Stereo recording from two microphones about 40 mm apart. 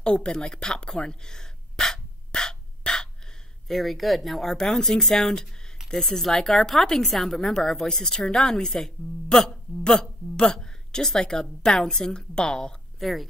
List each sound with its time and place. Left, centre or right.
0.0 s speech: left
0.5 s gasp: centre
3.6 s a woman's voice: centre
13.0 s speech: centre